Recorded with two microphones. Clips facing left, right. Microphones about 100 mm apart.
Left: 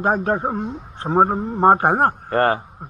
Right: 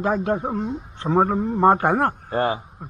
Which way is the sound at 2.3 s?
60° left (ahead or behind).